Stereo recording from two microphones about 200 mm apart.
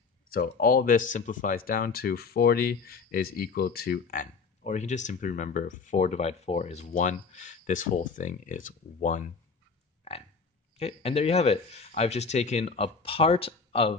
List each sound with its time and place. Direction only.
0.3 s speech: 45° left (ahead or behind)
10.8 s speech: 30° left (ahead or behind)